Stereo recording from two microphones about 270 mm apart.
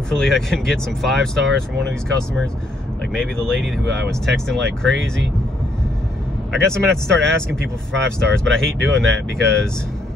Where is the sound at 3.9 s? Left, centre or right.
Right.